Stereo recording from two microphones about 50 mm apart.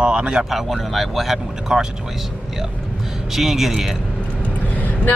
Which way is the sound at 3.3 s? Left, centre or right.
Centre.